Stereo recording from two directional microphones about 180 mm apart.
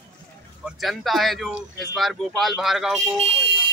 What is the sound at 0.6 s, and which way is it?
Speech, centre (ahead or behind).